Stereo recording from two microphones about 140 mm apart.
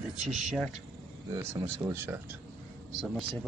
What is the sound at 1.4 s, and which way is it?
Speech, 20° right (ahead or behind).